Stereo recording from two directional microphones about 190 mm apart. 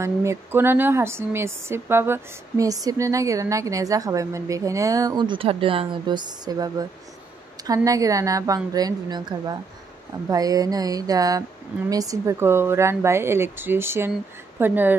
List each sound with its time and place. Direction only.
0.0 s a woman's voice: 15° right (ahead or behind)
10.3 s a sound: 20° right (ahead or behind)
11.9 s a woman's voice: 20° right (ahead or behind)